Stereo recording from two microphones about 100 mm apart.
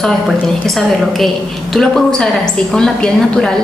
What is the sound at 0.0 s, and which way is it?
A woman's voice, centre (ahead or behind).